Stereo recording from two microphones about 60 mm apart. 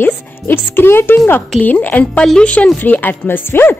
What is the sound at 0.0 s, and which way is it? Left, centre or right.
Music, left.